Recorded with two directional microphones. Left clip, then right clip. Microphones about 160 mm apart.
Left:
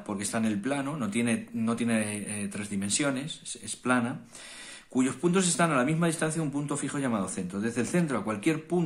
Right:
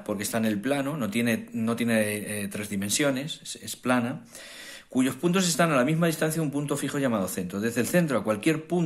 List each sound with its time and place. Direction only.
0.0 s speech: 25° right (ahead or behind)